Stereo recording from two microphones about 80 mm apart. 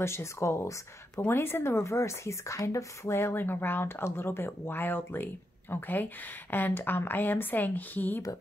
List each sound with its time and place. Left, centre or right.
0.0 s speech: left